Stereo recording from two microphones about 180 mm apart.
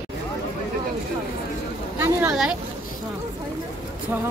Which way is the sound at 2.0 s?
10° right (ahead or behind).